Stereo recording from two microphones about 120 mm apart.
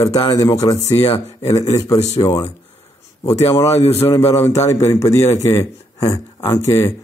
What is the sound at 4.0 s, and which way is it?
Speech, 25° left (ahead or behind).